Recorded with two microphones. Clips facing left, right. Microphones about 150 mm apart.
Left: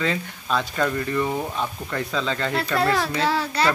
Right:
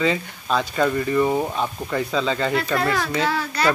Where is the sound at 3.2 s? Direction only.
30° left (ahead or behind).